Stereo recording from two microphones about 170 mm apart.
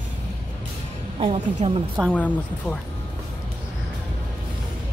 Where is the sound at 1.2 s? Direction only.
35° right (ahead or behind).